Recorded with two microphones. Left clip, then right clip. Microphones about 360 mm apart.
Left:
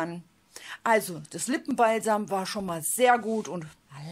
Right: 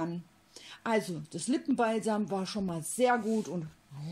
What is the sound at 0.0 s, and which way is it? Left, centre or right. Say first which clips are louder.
Speech: left 4 dB; centre.